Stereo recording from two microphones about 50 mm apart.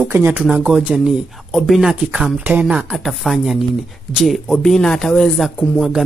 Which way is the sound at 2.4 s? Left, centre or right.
Right.